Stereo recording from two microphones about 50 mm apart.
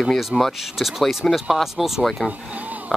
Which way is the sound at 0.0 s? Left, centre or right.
Centre.